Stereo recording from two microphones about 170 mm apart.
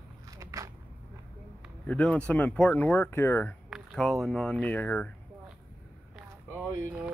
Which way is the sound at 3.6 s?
Centre (ahead or behind).